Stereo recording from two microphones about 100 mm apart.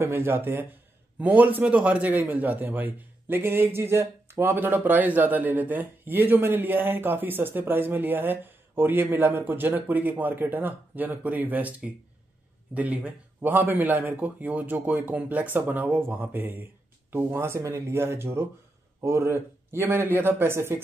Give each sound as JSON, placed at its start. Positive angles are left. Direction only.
{"t": 0.0, "sound": "a man's voice", "side_deg": -25}